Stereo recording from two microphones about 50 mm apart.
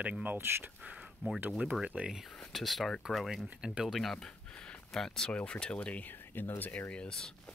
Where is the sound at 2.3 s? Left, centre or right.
Centre.